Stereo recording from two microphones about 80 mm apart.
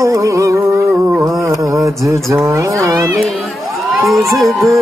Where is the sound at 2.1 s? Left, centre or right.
Right.